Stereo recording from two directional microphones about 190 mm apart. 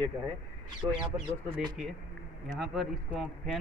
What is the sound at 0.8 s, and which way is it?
Speech, 15° right (ahead or behind).